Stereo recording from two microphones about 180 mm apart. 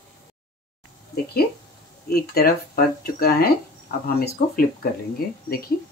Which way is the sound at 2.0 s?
60° left (ahead or behind).